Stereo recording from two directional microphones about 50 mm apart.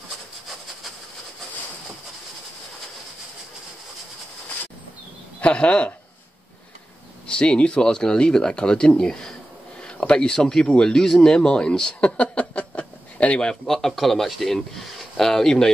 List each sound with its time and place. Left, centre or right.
5.4 s speech: left
7.2 s speech: left
12.2 s a sound: left
13.5 s speech: centre